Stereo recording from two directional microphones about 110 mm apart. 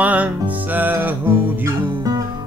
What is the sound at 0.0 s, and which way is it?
Music, 15° right (ahead or behind).